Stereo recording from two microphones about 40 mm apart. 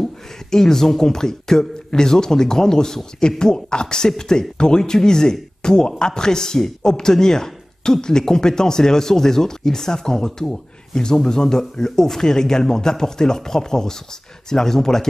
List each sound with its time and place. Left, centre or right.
0.5 s speech: centre